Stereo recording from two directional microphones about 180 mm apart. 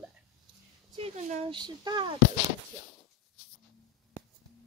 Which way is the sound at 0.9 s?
35° right (ahead or behind).